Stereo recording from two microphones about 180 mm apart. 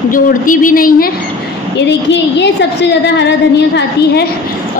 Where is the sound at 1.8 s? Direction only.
75° left (ahead or behind).